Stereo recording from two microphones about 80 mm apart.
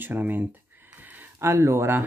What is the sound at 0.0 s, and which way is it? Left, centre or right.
Speech, right.